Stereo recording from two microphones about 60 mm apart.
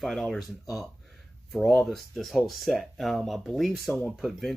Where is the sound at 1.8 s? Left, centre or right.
Centre.